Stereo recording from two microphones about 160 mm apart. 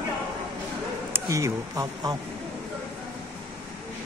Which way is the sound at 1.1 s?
20° right (ahead or behind).